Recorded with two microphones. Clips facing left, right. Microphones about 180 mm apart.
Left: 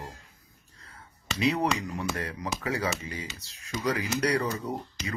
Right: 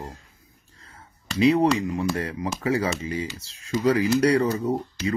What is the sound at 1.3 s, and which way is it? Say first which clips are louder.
Speech: right 8 dB; 25° right (ahead or behind).